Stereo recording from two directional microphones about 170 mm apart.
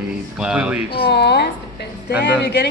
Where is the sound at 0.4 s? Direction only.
5° right (ahead or behind).